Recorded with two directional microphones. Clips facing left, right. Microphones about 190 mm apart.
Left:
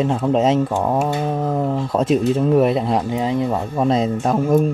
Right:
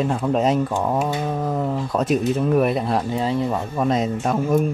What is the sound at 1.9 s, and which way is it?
Speech, 25° left (ahead or behind).